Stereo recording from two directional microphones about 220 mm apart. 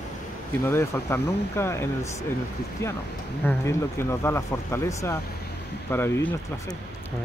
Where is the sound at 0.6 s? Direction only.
10° left (ahead or behind).